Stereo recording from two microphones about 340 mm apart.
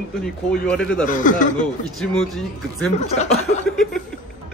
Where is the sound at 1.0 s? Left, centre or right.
Left.